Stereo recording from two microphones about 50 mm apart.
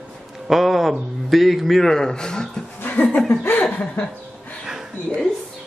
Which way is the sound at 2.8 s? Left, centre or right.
Left.